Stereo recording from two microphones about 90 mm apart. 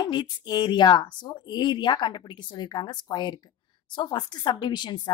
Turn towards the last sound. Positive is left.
turn(degrees=55)  # may be behind; listen again after turning